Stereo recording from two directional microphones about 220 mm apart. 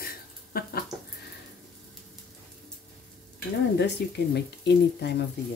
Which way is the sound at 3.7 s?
50° left (ahead or behind).